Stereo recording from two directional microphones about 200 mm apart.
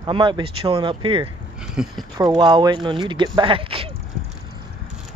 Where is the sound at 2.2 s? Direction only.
20° right (ahead or behind).